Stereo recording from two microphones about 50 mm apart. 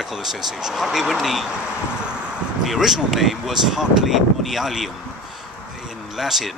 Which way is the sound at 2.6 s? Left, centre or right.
Centre.